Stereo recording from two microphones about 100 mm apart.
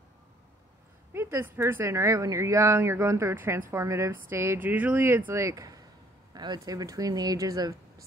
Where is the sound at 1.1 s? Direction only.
25° right (ahead or behind).